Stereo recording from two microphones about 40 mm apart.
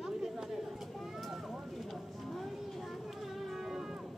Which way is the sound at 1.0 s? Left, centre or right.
Centre.